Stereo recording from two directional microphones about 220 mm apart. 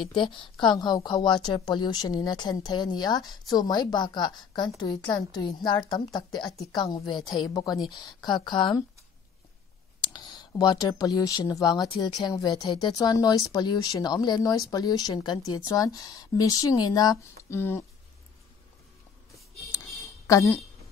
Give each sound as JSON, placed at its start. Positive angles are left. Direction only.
{"t": 0.0, "sound": "speech", "side_deg": 20}
{"t": 9.9, "sound": "speech", "side_deg": 20}
{"t": 19.3, "sound": "a sound", "side_deg": 15}